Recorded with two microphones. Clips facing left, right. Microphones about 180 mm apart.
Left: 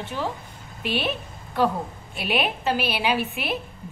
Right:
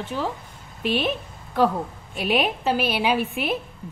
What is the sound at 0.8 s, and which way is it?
Speech, 40° right (ahead or behind).